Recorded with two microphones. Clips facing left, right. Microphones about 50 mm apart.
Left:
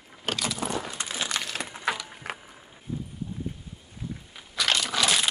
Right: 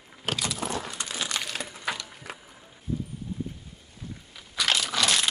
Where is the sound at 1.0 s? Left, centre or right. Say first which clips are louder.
Left 1 dB; centre.